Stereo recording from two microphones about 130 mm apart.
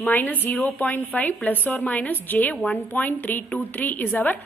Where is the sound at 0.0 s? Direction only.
15° left (ahead or behind).